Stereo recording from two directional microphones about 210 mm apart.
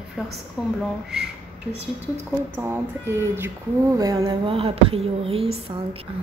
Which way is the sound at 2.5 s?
10° right (ahead or behind).